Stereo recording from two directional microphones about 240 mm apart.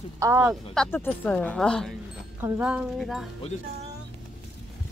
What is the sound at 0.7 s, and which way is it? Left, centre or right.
Speech, centre.